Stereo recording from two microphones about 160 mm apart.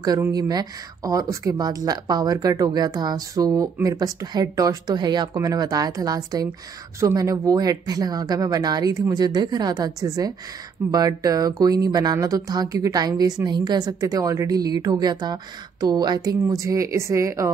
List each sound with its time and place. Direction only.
0.0 s a woman's voice: 25° right (ahead or behind)